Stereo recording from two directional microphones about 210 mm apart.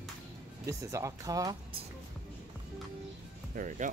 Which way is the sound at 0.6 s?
15° right (ahead or behind).